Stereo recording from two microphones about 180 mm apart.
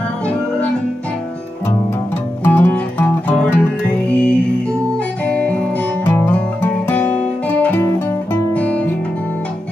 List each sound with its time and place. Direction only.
2.4 s music: 10° left (ahead or behind)